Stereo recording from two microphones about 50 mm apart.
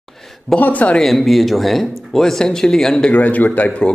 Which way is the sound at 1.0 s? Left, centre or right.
Centre.